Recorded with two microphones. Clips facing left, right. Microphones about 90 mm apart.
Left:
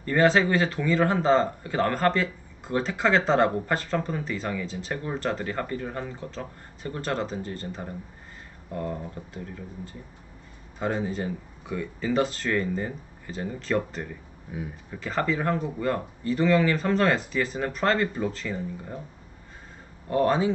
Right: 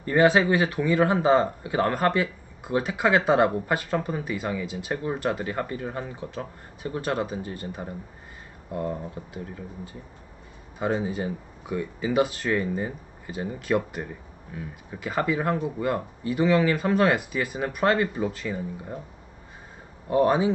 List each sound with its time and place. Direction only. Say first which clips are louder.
0.0 s speech: right 1 dB; 15° right (ahead or behind)
10.8 s speech: right 2 dB; 15° right (ahead or behind)
14.5 s speech: left 2 dB; 10° left (ahead or behind)
14.9 s speech: right 1 dB; 10° right (ahead or behind)
20.1 s speech: right 2 dB; 15° right (ahead or behind)